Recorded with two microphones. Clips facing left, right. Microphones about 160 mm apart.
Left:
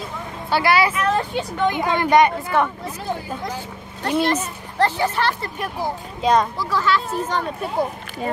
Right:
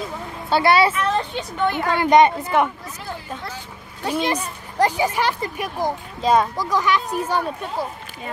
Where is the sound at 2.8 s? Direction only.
30° left (ahead or behind).